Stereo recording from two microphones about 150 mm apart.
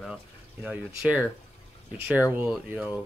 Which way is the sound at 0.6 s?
10° right (ahead or behind).